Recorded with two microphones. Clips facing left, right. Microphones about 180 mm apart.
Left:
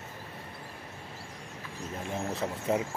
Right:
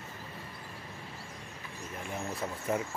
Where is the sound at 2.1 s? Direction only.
20° left (ahead or behind).